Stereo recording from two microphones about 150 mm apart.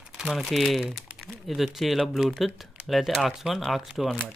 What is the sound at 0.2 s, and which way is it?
Speech, centre (ahead or behind).